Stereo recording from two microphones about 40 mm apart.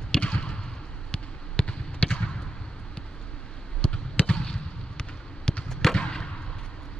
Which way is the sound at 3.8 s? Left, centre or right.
Left.